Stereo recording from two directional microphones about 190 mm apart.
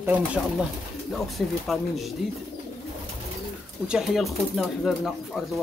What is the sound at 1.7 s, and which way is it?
Speech, centre (ahead or behind).